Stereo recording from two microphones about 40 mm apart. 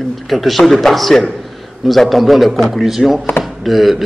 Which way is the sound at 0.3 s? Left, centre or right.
Centre.